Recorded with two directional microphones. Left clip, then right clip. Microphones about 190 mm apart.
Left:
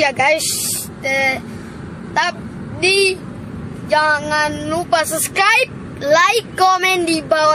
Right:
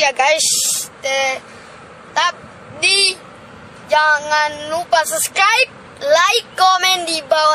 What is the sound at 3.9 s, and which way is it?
Speech, 5° right (ahead or behind).